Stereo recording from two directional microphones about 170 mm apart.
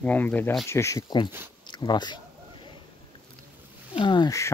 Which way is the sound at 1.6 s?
25° left (ahead or behind).